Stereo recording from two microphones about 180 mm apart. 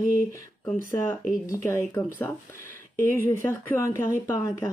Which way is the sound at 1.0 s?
15° left (ahead or behind).